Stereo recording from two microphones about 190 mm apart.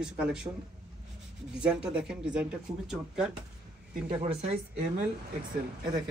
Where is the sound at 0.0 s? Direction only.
5° right (ahead or behind).